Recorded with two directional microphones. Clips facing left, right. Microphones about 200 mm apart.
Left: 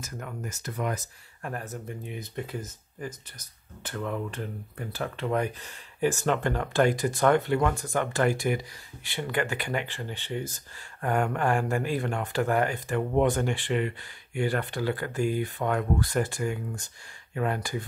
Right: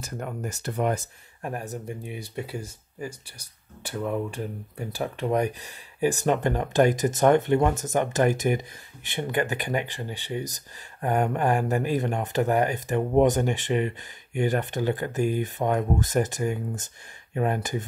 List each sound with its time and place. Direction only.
0.0 s speech: 35° right (ahead or behind)
1.4 s speech: 15° right (ahead or behind)